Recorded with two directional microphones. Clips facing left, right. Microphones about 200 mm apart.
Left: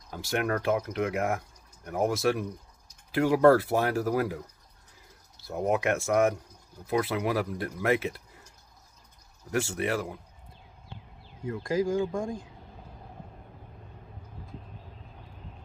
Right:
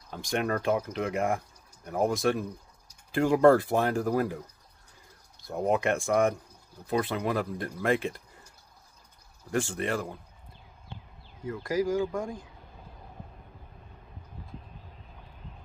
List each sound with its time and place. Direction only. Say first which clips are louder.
0.1 s speech: even; 5° left (ahead or behind)
5.4 s speech: even; 5° left (ahead or behind)
9.5 s speech: left 1 dB; 10° left (ahead or behind)
11.5 s speech: even; 20° left (ahead or behind)